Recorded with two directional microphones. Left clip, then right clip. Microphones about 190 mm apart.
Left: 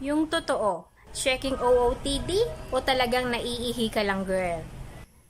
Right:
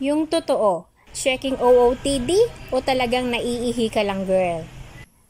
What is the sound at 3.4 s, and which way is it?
Speech, 35° right (ahead or behind).